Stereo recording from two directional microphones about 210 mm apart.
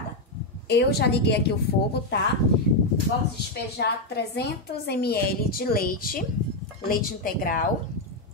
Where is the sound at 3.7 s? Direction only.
50° left (ahead or behind).